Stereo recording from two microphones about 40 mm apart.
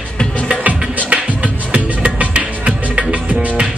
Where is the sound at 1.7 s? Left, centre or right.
Right.